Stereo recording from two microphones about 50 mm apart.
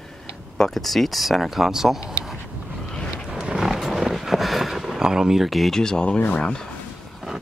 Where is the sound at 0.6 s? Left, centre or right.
Centre.